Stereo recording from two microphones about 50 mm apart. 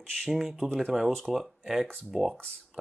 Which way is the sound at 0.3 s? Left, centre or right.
Centre.